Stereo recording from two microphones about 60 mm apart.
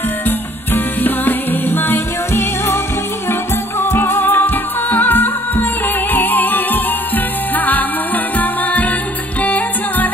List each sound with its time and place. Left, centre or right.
0.7 s music: left
3.8 s music: left